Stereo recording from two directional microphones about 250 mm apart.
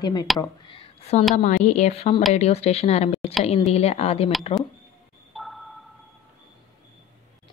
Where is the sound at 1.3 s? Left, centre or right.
Left.